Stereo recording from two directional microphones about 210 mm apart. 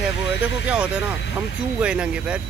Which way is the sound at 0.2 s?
60° left (ahead or behind).